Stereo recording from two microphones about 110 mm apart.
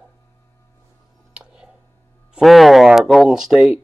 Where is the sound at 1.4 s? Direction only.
5° right (ahead or behind).